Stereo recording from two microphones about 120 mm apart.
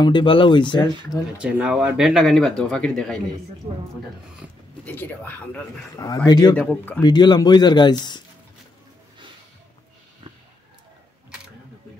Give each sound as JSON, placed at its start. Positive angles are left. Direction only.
{"t": 0.0, "sound": "speech", "side_deg": 45}
{"t": 1.4, "sound": "speech", "side_deg": -10}
{"t": 3.7, "sound": "speech", "side_deg": -40}
{"t": 4.8, "sound": "speech", "side_deg": 15}
{"t": 5.9, "sound": "speech", "side_deg": 35}
{"t": 6.5, "sound": "speech", "side_deg": 10}
{"t": 7.0, "sound": "speech", "side_deg": 35}